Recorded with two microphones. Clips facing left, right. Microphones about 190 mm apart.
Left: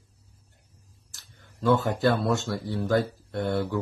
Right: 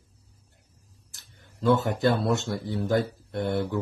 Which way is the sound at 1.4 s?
20° right (ahead or behind).